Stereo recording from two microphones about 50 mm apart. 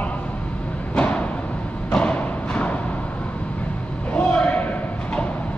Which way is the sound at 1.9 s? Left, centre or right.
Left.